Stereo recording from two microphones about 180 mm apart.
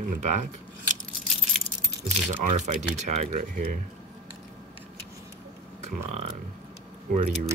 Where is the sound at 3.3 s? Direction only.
50° right (ahead or behind).